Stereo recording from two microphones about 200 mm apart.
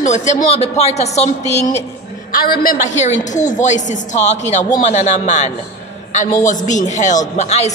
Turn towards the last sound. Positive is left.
turn(degrees=35)  # may be behind; listen again after turning